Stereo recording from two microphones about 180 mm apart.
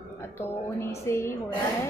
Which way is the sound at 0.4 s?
15° left (ahead or behind).